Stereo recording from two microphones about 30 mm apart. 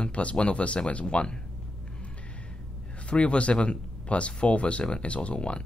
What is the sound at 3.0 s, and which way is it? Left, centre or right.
Speech, left.